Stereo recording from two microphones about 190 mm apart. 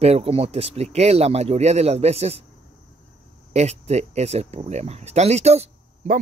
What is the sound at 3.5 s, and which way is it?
Speech, 35° right (ahead or behind).